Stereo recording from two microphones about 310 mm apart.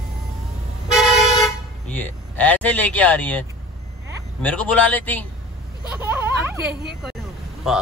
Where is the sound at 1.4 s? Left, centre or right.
Centre.